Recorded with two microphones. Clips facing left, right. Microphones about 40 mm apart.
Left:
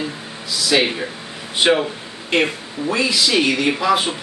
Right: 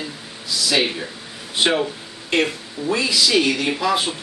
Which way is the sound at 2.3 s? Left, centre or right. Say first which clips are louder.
Left 2 dB; centre.